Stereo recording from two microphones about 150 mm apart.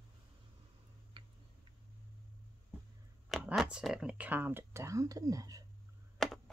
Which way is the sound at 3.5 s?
Centre (ahead or behind).